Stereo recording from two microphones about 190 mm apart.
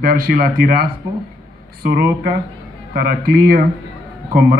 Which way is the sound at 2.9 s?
50° right (ahead or behind).